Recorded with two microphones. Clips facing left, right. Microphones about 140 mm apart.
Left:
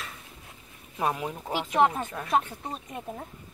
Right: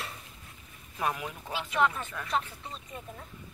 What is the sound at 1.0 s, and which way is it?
Speech, 30° left (ahead or behind).